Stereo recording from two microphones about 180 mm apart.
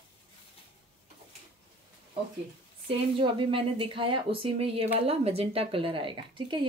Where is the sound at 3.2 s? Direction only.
30° right (ahead or behind).